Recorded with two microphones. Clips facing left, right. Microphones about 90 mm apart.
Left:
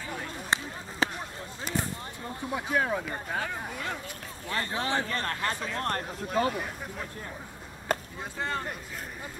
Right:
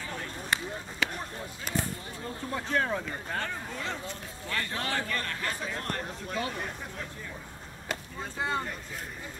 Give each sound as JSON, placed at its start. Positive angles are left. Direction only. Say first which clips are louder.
{"t": 0.5, "sound": "a sound", "louder": "left 1 dB", "side_deg": 35}
{"t": 2.5, "sound": "speech", "louder": "left 1 dB", "side_deg": 10}
{"t": 4.5, "sound": "a man's voice", "louder": "left 3 dB", "side_deg": 25}
{"t": 5.2, "sound": "speech", "louder": "left 3 dB", "side_deg": 40}
{"t": 7.9, "sound": "chop", "louder": "left 7 dB", "side_deg": 45}
{"t": 8.4, "sound": "speech", "louder": "right 1 dB", "side_deg": -5}